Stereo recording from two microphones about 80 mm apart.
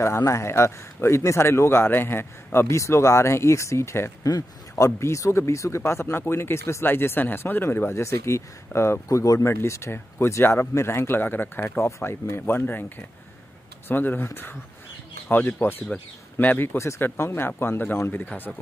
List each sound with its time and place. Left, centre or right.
0.0 s speech: left
4.2 s speech: left